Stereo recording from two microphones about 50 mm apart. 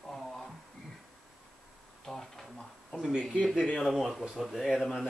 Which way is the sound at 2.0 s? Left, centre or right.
Centre.